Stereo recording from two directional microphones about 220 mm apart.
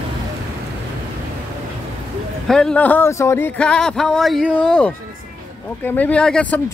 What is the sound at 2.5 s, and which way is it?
Speech, 5° left (ahead or behind).